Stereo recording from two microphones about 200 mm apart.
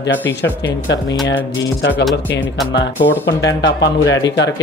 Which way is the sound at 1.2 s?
65° left (ahead or behind).